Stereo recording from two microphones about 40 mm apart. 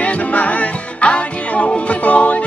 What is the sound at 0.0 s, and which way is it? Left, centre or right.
Music, left.